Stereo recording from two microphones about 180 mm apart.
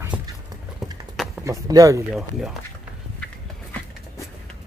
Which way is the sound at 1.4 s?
20° right (ahead or behind).